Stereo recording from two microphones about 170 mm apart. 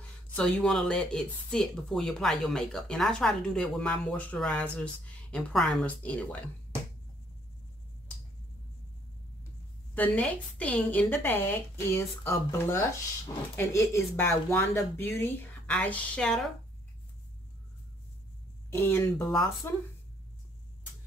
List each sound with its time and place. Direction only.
0.4 s speech: 5° left (ahead or behind)
9.9 s speech: 10° left (ahead or behind)
18.7 s speech: 15° left (ahead or behind)